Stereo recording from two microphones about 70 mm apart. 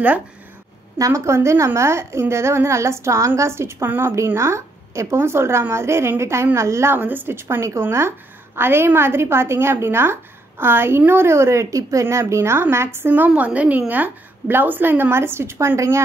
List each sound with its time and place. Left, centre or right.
0.9 s a woman's voice: right
7.0 s a woman's voice: right
13.3 s a woman's voice: centre; by 16.0 s right